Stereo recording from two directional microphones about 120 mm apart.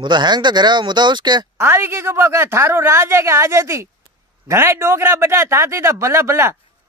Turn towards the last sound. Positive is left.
turn(degrees=-20)  # may be behind; listen again after turning